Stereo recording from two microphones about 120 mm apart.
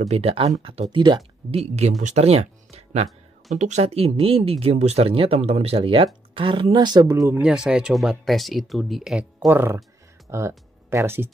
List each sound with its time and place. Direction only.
0.1 s speech: 60° right (ahead or behind); by 1.2 s 40° right (ahead or behind)
1.8 s speech: 80° right; by 3.1 s 60° right (ahead or behind)
3.5 s speech: 75° right (ahead or behind); by 7.2 s 30° right (ahead or behind)
7.4 s speech: 5° right (ahead or behind)
9.5 s speech: 20° right (ahead or behind)